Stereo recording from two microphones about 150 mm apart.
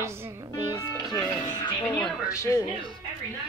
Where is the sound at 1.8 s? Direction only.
15° left (ahead or behind).